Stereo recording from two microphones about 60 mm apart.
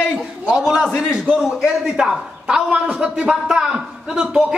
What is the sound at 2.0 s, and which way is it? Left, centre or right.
A man's voice, centre.